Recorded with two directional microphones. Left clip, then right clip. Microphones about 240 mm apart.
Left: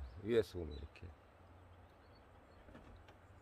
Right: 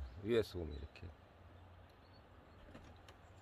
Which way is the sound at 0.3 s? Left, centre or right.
Centre.